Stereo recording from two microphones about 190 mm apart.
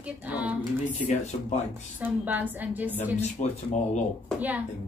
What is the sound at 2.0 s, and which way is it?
Speech, 10° right (ahead or behind).